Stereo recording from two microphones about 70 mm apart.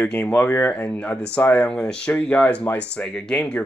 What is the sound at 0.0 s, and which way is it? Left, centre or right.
Speech, left.